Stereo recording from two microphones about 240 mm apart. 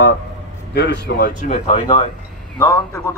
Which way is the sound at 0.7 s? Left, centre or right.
Left.